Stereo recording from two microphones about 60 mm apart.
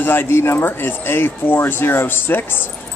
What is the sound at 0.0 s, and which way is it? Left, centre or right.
Speech, left.